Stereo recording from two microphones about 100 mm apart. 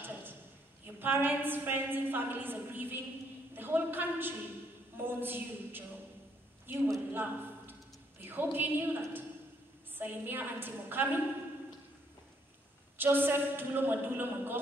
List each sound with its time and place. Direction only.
0.0 s a sound: 20° right (ahead or behind)
0.9 s a woman's voice: 20° right (ahead or behind)
12.9 s a woman's voice: 20° right (ahead or behind)